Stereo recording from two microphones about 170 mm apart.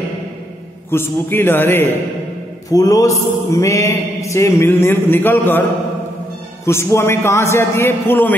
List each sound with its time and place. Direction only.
0.8 s mantra: 15° left (ahead or behind)